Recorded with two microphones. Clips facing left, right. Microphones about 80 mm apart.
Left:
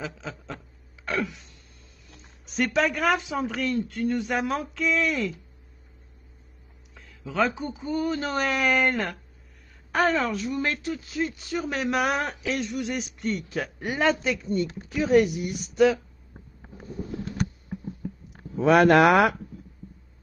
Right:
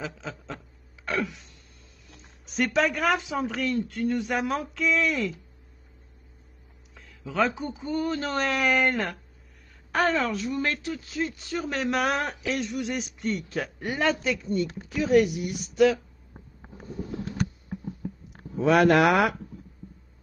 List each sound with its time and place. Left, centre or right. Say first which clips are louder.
0.0 s a sound: even; centre
2.0 s a woman's voice: even; centre
6.9 s a sound: left 1 dB; centre
7.3 s a woman's voice: even; centre
13.8 s speech: left 2 dB; centre
14.4 s speech: left 1 dB; left
18.6 s speech: left 2 dB; left